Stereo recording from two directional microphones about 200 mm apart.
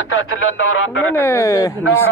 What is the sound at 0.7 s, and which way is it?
Speech, 90° left.